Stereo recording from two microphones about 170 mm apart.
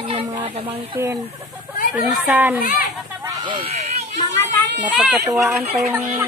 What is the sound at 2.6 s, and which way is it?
Speech, 55° left (ahead or behind).